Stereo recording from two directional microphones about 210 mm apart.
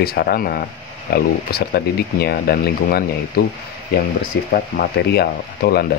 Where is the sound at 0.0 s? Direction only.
50° left (ahead or behind).